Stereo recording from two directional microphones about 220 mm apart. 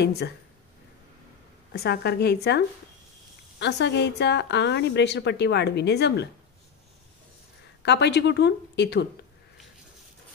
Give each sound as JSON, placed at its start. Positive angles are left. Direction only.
{"t": 1.7, "sound": "a woman's voice", "side_deg": 45}
{"t": 7.8, "sound": "a woman's voice", "side_deg": 50}